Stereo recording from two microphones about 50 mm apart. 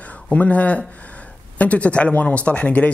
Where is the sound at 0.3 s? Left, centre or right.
Left.